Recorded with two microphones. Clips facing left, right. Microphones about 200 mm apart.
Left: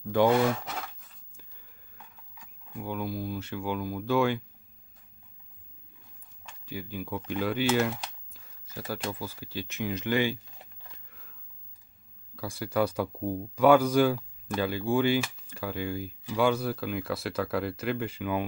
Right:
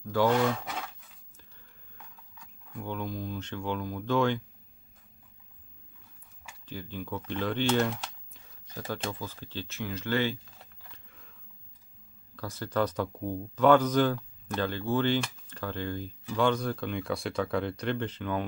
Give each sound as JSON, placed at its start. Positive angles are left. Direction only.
{"t": 0.1, "sound": "speech", "side_deg": 15}
{"t": 0.4, "sound": "wood", "side_deg": 5}
{"t": 2.0, "sound": "speech", "side_deg": 10}
{"t": 6.6, "sound": "speech", "side_deg": 10}
{"t": 11.1, "sound": "a sound", "side_deg": 0}
{"t": 12.4, "sound": "speech", "side_deg": 10}